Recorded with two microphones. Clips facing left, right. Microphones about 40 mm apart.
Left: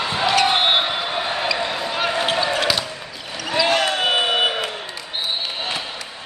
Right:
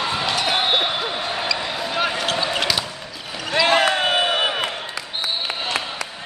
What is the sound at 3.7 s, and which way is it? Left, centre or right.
Basketball bounce, right.